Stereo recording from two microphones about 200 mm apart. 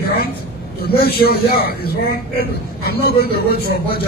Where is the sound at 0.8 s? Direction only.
50° left (ahead or behind).